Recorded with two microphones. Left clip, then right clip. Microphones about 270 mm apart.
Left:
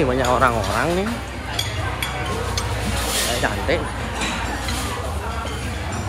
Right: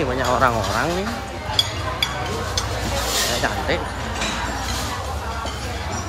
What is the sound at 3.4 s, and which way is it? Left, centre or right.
Speech, centre.